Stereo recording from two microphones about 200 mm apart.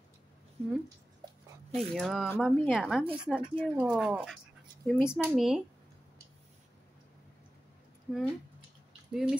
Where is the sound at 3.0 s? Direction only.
25° right (ahead or behind).